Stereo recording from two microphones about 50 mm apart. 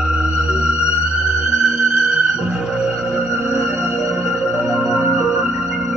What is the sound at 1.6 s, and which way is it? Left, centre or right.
Music, centre.